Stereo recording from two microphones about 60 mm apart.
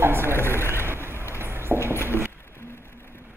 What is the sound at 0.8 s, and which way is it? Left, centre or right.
Vehicle, right.